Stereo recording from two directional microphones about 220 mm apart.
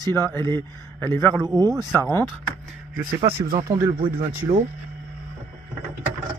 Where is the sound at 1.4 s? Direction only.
15° right (ahead or behind).